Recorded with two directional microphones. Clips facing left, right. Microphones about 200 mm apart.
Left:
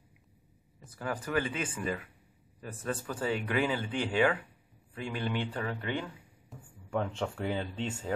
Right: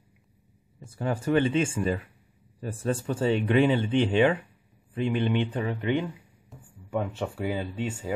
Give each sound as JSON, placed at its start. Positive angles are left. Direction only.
{"t": 0.8, "sound": "speech", "side_deg": -25}
{"t": 6.5, "sound": "speech", "side_deg": -5}